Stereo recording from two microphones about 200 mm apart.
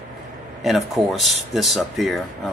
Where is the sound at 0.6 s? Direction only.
Centre (ahead or behind).